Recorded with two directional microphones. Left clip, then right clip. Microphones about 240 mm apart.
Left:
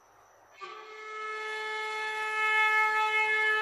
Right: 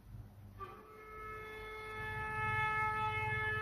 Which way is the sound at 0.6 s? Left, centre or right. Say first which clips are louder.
Left 8 dB; left.